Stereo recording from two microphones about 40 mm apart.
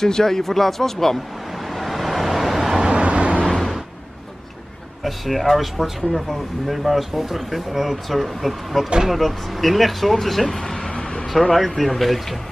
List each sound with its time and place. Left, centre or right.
0.0 s speech: centre
1.7 s vehicle: centre
2.8 s vehicle: right
3.4 s vehicle: centre
5.0 s speech: centre
10.4 s a sound: centre
11.5 s speech: centre